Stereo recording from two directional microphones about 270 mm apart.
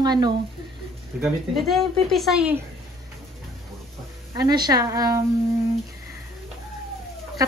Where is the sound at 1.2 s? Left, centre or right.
Centre.